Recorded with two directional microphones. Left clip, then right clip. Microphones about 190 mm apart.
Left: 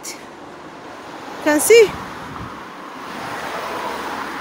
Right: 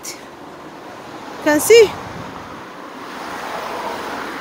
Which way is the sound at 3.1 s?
45° left (ahead or behind).